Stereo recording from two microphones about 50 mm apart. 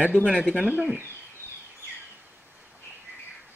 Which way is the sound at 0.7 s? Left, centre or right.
Centre.